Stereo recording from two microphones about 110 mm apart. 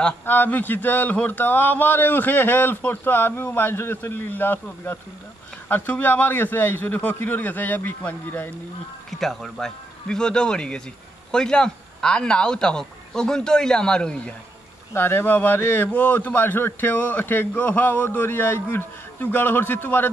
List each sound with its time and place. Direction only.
0.2 s a man's voice: 15° left (ahead or behind)
9.2 s a man's voice: 5° left (ahead or behind)
15.0 s a man's voice: 20° left (ahead or behind)